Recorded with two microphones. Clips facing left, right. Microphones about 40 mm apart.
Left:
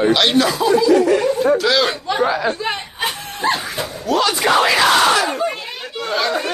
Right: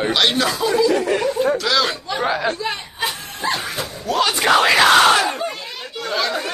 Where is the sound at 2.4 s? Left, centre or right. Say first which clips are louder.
Left 2 dB; left.